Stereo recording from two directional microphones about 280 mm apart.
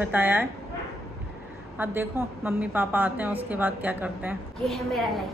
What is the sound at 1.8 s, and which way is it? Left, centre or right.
A woman's voice, centre.